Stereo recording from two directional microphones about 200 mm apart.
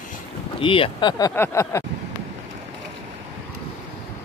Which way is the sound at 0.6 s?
25° left (ahead or behind).